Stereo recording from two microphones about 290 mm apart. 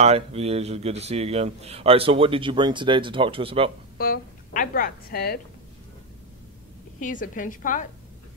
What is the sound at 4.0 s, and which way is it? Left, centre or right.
A woman's voice, left.